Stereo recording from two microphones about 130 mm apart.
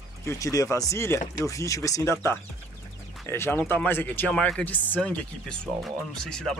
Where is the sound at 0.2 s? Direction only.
25° left (ahead or behind).